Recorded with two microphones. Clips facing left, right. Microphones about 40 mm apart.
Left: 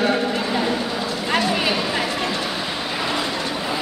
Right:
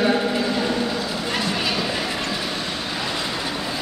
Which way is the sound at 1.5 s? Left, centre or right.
Centre.